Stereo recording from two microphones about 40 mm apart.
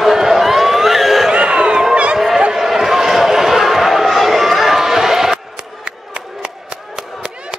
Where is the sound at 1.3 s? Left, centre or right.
Right.